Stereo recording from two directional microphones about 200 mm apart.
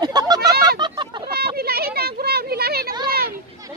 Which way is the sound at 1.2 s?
50° right (ahead or behind).